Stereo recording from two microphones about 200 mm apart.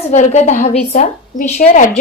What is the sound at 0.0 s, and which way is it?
A woman's voice, 35° left (ahead or behind).